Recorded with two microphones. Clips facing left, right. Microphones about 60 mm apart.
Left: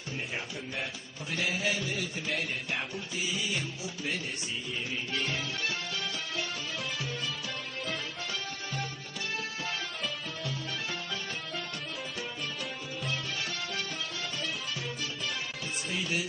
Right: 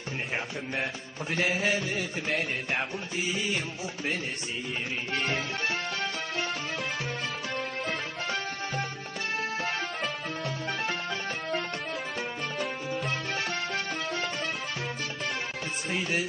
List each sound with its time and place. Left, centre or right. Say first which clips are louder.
1.3 s music: right 4 dB; right
5.1 s music: right 5 dB; right
7.8 s music: right 4 dB; right
13.3 s music: right 5 dB; right
15.9 s music: right 4 dB; right